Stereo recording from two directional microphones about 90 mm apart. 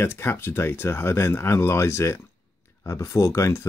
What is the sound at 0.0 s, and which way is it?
Speech, 25° left (ahead or behind).